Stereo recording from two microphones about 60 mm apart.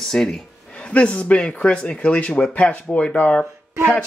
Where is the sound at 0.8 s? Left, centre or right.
Left.